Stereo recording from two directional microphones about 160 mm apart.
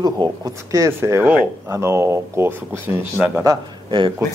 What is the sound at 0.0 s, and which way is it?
Speech, 25° right (ahead or behind).